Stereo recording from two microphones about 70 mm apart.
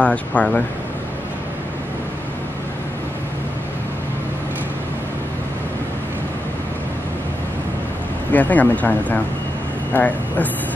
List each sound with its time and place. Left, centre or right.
0.0 s speech: left
8.3 s speech: left